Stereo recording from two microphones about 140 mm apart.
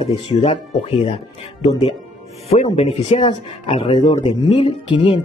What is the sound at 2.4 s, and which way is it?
Speech, 45° left (ahead or behind).